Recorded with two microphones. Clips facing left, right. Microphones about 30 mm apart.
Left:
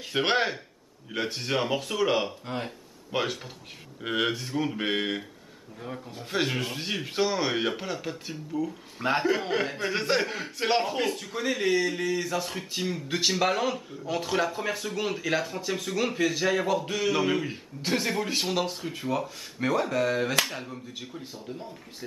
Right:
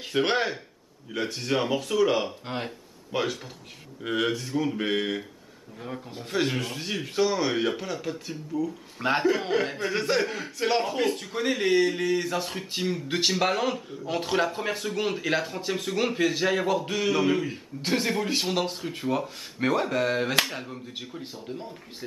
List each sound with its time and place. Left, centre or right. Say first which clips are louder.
0.1 s speech: even; centre
2.4 s speech: right 1 dB; right
3.1 s speech: right 1 dB; centre
5.8 s speech: right 1 dB; centre
11.1 s speech: right 2 dB; centre
12.5 s speech: right 2 dB; centre
17.1 s speech: right 3 dB; centre